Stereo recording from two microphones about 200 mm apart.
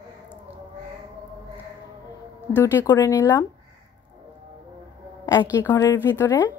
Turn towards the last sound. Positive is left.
turn(degrees=10)  # may be behind; listen again after turning